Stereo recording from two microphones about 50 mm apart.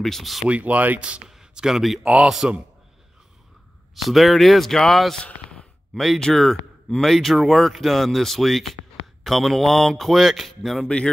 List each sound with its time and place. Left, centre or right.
0.0 s speech: centre
0.5 s a man's voice: right; by 2.5 s centre
3.9 s speech: centre
5.2 s a sound: centre
5.9 s speech: centre
10.8 s speech: centre